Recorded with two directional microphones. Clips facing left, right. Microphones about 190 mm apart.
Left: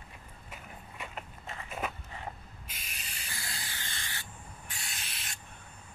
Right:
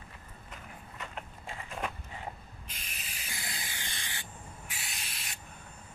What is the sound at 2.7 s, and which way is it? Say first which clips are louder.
Spray: even; centre (ahead or behind).